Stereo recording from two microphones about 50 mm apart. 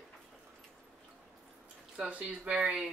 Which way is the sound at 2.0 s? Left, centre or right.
Right.